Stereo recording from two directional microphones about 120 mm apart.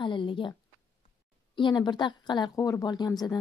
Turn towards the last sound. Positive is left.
turn(degrees=35)  # may be behind; listen again after turning